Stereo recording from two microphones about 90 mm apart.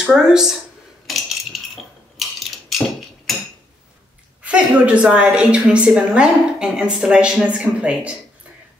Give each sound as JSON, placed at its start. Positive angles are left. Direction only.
{"t": 0.0, "sound": "a woman's voice", "side_deg": -5}
{"t": 1.0, "sound": "a sound", "side_deg": 0}
{"t": 4.4, "sound": "a woman's voice", "side_deg": -15}